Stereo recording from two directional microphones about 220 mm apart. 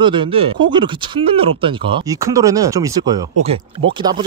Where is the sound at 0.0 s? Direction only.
20° right (ahead or behind).